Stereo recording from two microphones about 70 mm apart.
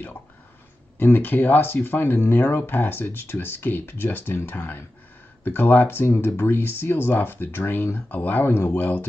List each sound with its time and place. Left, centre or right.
0.9 s speech: left